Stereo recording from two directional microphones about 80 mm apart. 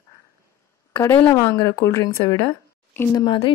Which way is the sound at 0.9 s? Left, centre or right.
Left.